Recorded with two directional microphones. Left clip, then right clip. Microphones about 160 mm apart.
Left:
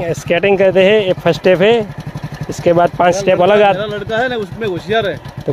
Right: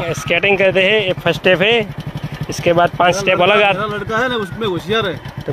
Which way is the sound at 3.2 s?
30° left (ahead or behind).